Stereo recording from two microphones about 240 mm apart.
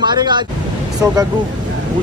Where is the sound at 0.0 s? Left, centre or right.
Centre.